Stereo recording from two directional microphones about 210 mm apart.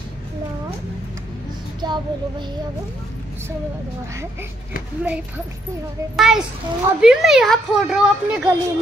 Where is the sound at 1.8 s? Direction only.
20° right (ahead or behind).